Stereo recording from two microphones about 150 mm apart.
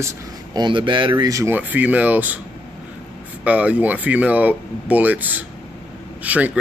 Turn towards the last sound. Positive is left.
turn(degrees=-10)  # may be behind; listen again after turning